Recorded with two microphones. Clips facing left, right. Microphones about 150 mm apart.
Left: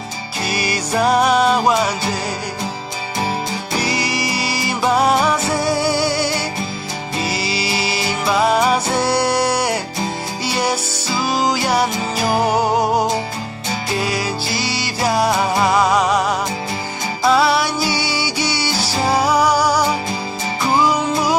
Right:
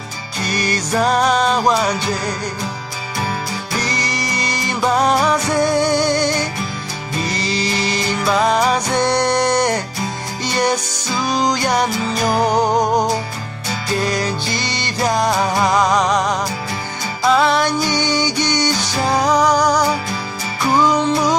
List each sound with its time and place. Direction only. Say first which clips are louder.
0.4 s music: right 1 dB; 10° left (ahead or behind)
3.8 s music: left 2 dB; 10° left (ahead or behind)